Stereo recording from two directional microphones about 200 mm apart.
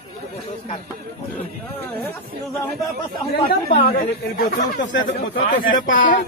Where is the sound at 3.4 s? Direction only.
45° left (ahead or behind).